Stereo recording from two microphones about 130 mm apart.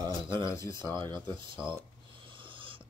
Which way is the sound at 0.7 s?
35° right (ahead or behind).